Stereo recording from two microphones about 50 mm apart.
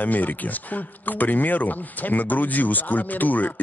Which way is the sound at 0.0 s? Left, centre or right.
Left.